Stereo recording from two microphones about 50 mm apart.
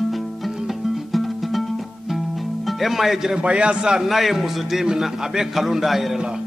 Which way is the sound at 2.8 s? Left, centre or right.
Centre.